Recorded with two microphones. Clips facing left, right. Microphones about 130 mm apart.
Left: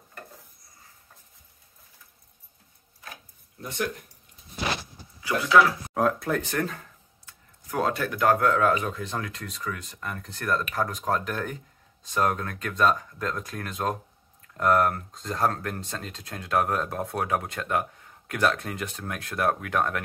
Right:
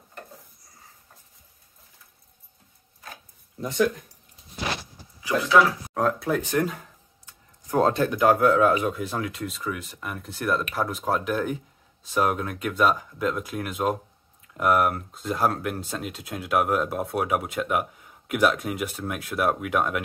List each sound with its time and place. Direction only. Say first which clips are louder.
5.2 s speech: right 1 dB; 25° right (ahead or behind)
5.9 s speech: right 1 dB; centre (ahead or behind)
6.5 s a sound: right 4 dB; 15° right (ahead or behind)
7.8 s speech: right 3 dB; 25° right (ahead or behind)